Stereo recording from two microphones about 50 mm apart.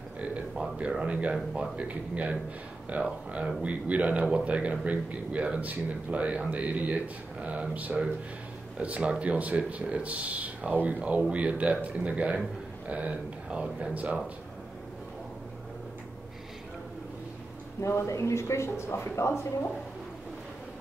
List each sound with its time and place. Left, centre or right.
0.6 s speech: right
1.8 s speech: right
17.7 s speech: left
19.1 s speech: left